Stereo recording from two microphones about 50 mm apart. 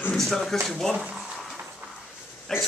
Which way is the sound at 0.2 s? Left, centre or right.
Centre.